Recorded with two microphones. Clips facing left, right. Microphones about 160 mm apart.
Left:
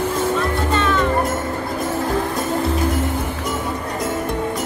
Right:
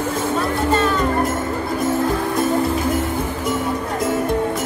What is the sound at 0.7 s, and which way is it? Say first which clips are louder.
Music: left 1 dB; 40° right (ahead or behind).